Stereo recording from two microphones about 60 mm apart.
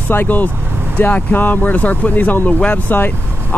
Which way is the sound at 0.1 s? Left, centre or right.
Left.